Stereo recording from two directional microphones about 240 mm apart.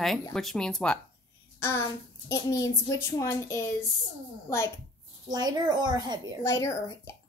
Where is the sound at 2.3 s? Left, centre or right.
Centre.